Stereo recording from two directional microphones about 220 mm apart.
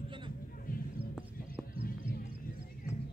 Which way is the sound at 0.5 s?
40° left (ahead or behind).